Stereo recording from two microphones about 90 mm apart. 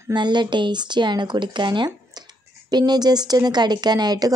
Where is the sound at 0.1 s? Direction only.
55° right (ahead or behind).